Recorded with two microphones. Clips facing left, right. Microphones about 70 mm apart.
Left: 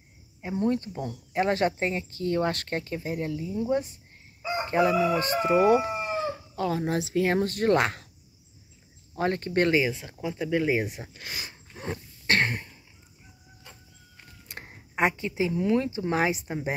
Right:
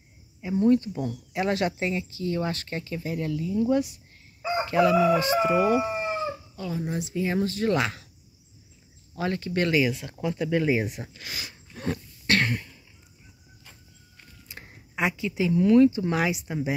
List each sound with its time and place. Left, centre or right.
0.4 s speech: left
4.6 s chicken: left
4.9 s chicken: right
5.2 s speech: left
6.1 s chicken: left
6.9 s speech: left
7.3 s speech: left
9.1 s speech: left; by 10.9 s centre
11.1 s speech: left
12.3 s a sound: left
14.6 s a sound: left
15.4 s speech: left